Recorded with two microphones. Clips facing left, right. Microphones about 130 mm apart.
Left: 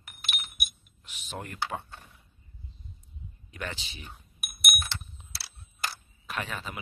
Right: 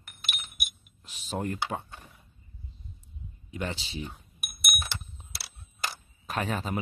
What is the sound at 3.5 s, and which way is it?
Speech, 25° right (ahead or behind).